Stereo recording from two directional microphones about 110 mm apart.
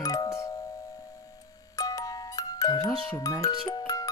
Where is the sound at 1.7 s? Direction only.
30° left (ahead or behind).